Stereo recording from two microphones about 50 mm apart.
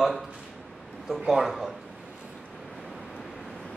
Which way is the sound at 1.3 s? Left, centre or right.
Centre.